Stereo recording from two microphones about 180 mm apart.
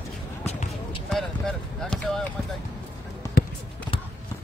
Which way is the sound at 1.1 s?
5° left (ahead or behind).